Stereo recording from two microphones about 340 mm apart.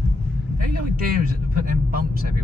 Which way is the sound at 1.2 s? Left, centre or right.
Right.